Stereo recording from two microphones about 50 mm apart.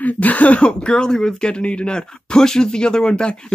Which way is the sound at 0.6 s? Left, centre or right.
Centre.